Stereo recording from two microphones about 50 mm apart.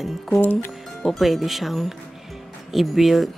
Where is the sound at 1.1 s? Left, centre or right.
Centre.